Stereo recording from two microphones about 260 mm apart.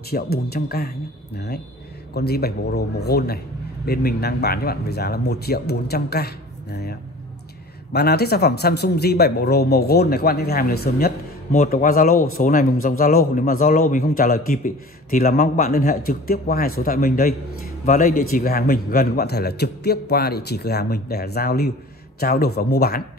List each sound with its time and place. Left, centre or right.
0.1 s a man's voice: left